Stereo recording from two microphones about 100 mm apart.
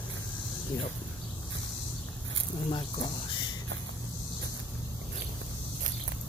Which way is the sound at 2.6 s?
55° left (ahead or behind).